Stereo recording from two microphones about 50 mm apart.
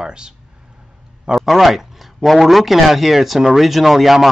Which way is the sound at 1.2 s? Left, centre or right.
Centre.